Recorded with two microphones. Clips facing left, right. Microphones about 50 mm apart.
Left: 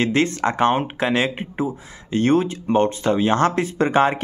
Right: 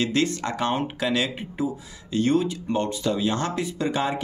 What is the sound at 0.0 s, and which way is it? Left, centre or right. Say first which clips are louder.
Speech: left 5 dB; left.